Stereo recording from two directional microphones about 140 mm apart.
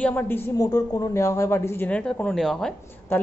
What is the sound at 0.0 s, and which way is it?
Speech, 15° left (ahead or behind).